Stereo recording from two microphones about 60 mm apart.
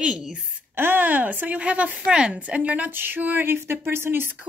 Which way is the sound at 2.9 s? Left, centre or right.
Right.